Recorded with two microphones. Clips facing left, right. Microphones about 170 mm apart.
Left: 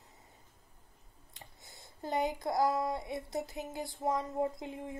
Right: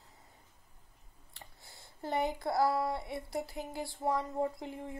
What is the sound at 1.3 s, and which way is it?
Speech, 20° left (ahead or behind).